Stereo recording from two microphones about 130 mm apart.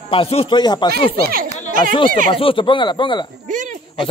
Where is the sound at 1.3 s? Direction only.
90° right.